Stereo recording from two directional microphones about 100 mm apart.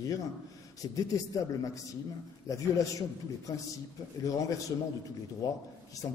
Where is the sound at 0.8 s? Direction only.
40° left (ahead or behind).